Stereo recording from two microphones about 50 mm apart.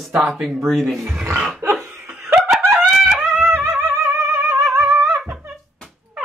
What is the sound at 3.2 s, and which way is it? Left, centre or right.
Music, centre.